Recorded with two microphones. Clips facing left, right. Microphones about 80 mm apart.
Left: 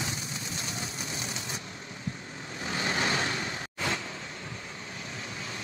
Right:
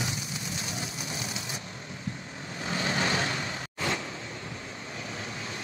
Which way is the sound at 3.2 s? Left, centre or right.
Right.